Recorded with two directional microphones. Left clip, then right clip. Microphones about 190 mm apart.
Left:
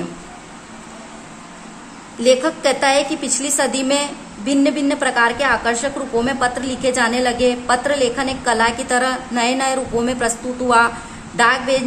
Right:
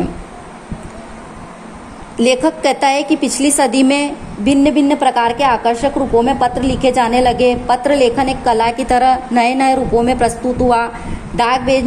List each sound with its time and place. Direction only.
2.1 s a woman's voice: 30° right (ahead or behind)